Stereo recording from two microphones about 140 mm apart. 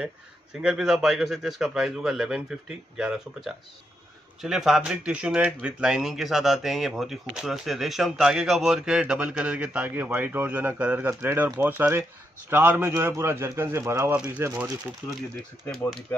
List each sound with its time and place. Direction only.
0.0 s speech: 5° right (ahead or behind)
14.1 s speech: 10° right (ahead or behind)
15.6 s speech: 5° left (ahead or behind)